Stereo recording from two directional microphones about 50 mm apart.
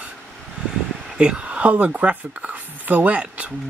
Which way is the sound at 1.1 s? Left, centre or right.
Centre.